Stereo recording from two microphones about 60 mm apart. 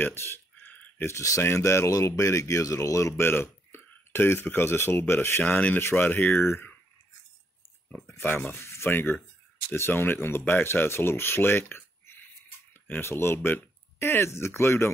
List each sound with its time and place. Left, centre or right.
0.0 s speech: left
0.7 s a sound: left
1.0 s speech: left
3.3 s speech: left
5.4 s speech: left
8.2 s speech: left
8.5 s speech: left
8.9 s speech: left